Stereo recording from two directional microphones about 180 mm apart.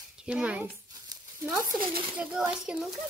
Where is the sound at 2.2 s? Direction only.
5° right (ahead or behind).